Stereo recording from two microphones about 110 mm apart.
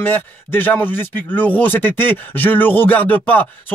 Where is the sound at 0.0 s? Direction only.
15° left (ahead or behind).